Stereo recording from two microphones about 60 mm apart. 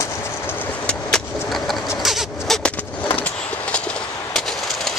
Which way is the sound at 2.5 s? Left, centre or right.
Centre.